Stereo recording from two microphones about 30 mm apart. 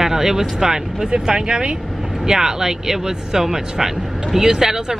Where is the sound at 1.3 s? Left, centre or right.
Right.